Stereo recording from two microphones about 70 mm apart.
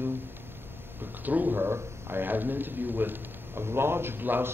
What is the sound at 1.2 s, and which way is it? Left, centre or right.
A man's voice, right.